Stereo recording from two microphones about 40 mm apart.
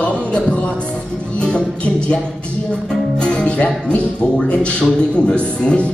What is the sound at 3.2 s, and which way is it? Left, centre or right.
Speech, left.